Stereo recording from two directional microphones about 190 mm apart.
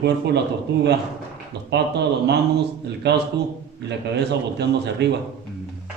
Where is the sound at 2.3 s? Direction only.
60° right (ahead or behind).